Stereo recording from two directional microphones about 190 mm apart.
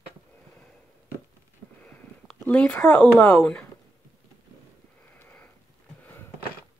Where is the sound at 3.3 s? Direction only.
5° left (ahead or behind).